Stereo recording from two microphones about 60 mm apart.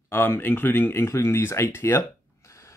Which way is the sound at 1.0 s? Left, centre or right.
Left.